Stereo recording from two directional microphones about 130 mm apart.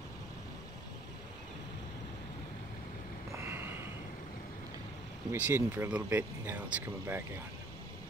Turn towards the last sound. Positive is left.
turn(degrees=-10)  # may be behind; listen again after turning